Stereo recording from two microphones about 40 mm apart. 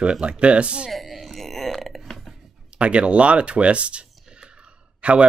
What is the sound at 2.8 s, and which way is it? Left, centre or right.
Speech, right.